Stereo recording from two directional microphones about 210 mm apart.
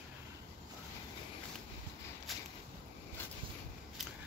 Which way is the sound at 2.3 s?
Centre (ahead or behind).